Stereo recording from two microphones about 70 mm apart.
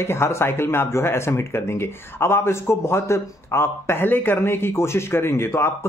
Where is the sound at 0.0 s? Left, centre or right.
Left.